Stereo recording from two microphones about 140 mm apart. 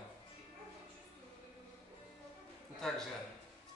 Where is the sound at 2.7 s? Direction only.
5° left (ahead or behind).